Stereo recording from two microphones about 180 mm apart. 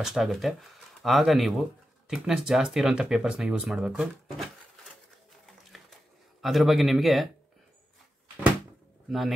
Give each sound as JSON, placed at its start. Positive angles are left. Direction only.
{"t": 0.0, "sound": "speech", "side_deg": 0}
{"t": 6.4, "sound": "speech", "side_deg": 0}